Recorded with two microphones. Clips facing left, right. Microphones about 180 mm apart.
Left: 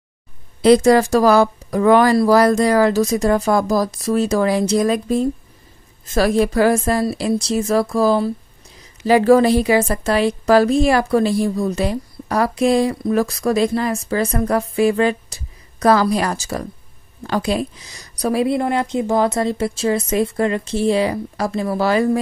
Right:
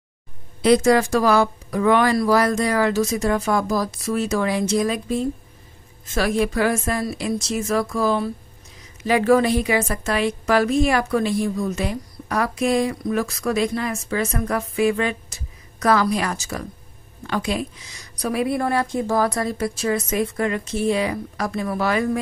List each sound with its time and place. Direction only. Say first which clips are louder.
0.6 s a woman's voice: left 4 dB; 35° left (ahead or behind)